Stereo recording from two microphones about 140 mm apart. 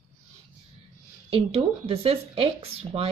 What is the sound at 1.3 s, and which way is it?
Speech, 45° right (ahead or behind).